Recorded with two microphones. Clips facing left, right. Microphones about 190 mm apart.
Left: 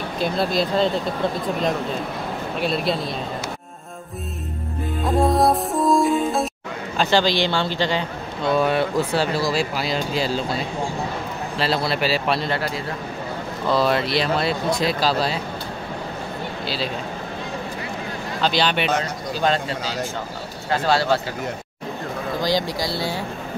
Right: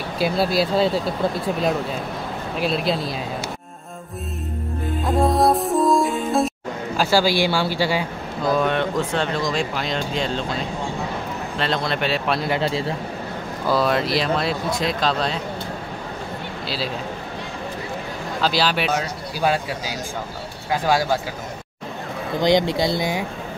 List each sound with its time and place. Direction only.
0.2 s speech: 5° right (ahead or behind)
2.6 s speech: centre (ahead or behind)
5.0 s speech: centre (ahead or behind)
8.5 s speech: 5° left (ahead or behind)
12.4 s speech: 20° right (ahead or behind)
13.7 s speech: centre (ahead or behind)
16.6 s a man's voice: centre (ahead or behind)
18.4 s speech: 5° right (ahead or behind)
22.4 s speech: 20° right (ahead or behind)